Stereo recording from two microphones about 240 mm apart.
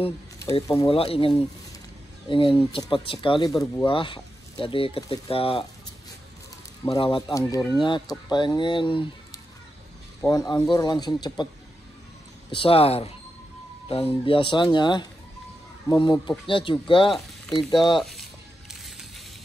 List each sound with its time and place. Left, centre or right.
0.7 s speech: left
6.8 s speech: centre
10.2 s speech: centre
12.4 s speech: left
17.1 s speech: centre
17.6 s speech: centre
18.7 s music: centre